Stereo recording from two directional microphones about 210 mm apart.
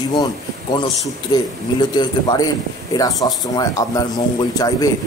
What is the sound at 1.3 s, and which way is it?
Speech, 20° left (ahead or behind).